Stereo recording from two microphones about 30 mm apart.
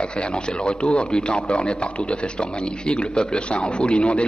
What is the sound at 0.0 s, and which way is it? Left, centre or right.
A man's voice, left.